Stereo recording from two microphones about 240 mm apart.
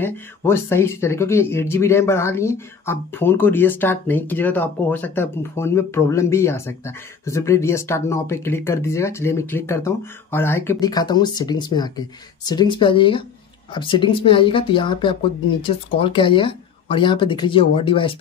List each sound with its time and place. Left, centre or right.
0.0 s speech: centre